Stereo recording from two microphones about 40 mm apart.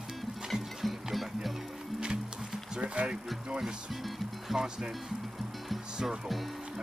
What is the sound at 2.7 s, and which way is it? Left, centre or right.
Speech, right.